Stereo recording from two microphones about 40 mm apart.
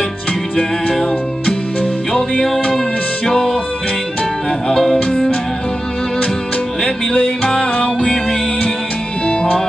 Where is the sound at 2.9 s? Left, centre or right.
Left.